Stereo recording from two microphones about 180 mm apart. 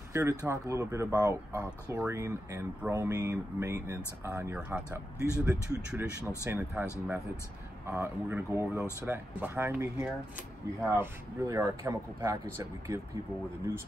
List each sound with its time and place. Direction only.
0.1 s speech: 15° right (ahead or behind)